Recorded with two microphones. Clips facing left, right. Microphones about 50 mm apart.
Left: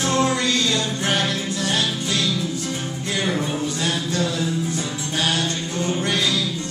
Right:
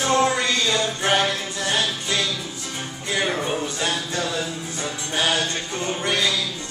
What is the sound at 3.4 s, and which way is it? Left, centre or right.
Music, centre.